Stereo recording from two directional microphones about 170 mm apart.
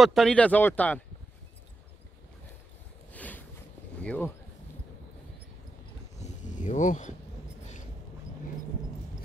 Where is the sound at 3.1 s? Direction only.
10° left (ahead or behind).